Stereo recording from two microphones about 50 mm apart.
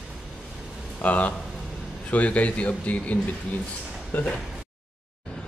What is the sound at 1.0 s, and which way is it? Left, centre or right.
A man's voice, left.